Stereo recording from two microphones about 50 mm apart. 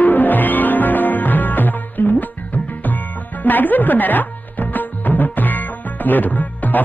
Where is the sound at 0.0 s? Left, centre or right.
Left.